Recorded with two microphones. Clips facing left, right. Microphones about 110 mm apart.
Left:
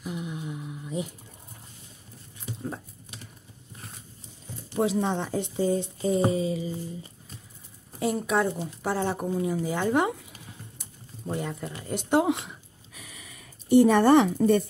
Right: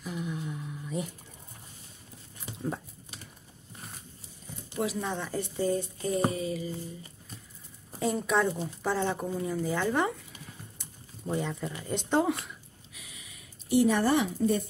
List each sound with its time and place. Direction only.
0.0 s a sound: 15° left (ahead or behind)
5.0 s speech: 20° left (ahead or behind)
8.0 s speech: 5° left (ahead or behind)
10.8 s typing: 5° left (ahead or behind)
12.1 s speech: 15° left (ahead or behind)
12.9 s a sound: 50° left (ahead or behind)